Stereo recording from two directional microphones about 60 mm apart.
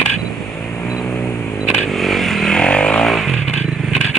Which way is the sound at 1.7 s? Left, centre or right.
Centre.